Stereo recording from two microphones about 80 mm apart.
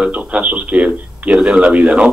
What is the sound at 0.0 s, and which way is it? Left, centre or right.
A man's voice, centre.